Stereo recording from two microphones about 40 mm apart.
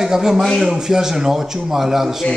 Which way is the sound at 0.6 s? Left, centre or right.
Centre.